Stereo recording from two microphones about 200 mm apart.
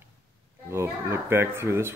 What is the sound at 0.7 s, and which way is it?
A child's voice, 15° right (ahead or behind).